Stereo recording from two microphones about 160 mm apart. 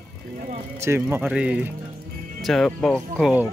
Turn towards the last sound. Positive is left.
turn(degrees=0)  # may be behind; listen again after turning